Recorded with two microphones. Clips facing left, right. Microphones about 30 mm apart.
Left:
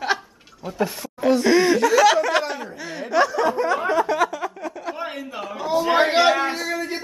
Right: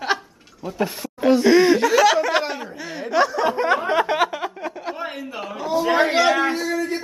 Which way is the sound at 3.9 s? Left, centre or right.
Right.